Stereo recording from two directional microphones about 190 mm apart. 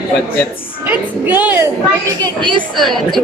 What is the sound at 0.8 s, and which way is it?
Music, 10° right (ahead or behind).